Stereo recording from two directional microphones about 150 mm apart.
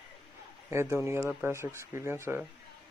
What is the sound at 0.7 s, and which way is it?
Speech, 15° right (ahead or behind).